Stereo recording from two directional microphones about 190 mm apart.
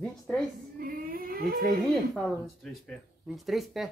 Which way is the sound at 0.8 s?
50° right (ahead or behind).